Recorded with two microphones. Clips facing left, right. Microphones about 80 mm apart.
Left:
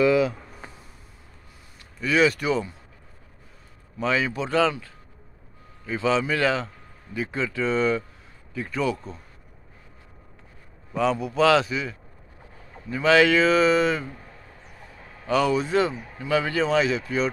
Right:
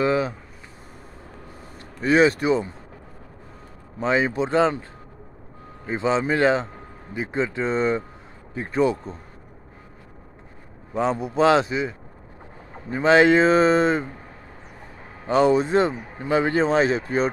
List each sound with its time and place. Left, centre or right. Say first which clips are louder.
0.0 s speech: left 2 dB; right
2.0 s speech: right 4 dB; right
4.0 s a man's voice: right 3 dB; right
5.9 s a man's voice: right 1 dB; right
10.9 s a man's voice: even; right